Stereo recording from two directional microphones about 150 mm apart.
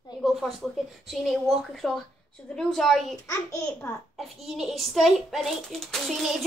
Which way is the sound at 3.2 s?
20° left (ahead or behind).